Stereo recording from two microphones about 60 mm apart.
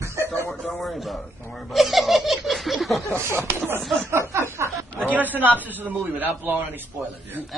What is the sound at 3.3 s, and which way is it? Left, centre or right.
A man's voice, right.